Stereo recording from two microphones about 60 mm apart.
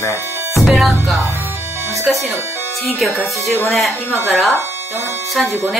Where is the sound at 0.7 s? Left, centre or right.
Centre.